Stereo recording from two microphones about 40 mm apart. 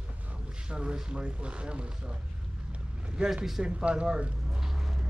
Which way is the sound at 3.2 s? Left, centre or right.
Centre.